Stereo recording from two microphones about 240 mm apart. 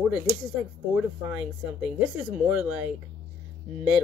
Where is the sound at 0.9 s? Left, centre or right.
Centre.